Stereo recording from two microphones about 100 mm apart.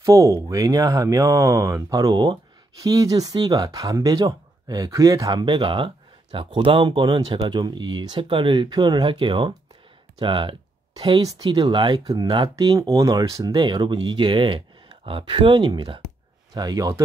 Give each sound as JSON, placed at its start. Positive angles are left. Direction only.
{"t": 0.0, "sound": "speech", "side_deg": -30}
{"t": 5.4, "sound": "speech", "side_deg": -55}
{"t": 12.7, "sound": "speech", "side_deg": -35}
{"t": 13.5, "sound": "speech", "side_deg": -50}
{"t": 16.5, "sound": "speech", "side_deg": -40}